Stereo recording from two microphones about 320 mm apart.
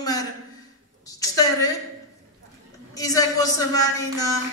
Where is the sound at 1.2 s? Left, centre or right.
Centre.